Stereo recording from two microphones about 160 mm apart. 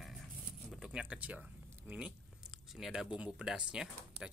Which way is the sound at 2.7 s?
5° right (ahead or behind).